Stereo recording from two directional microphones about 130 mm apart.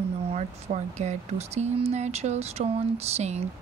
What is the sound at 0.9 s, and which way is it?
Speech, 60° right (ahead or behind).